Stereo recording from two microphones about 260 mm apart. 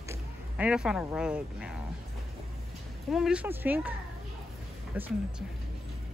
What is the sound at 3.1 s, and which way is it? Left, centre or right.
Speech, centre.